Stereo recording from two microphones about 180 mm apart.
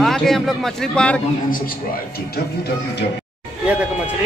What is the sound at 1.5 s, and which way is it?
Speech, 55° left (ahead or behind).